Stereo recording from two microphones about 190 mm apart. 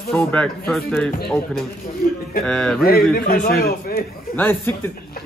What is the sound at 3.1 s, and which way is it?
Speech, 50° left (ahead or behind).